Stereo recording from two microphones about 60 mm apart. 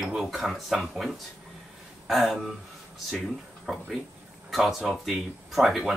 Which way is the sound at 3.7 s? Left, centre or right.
Centre.